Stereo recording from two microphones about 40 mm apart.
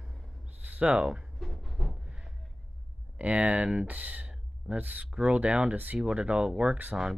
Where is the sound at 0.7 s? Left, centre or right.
Right.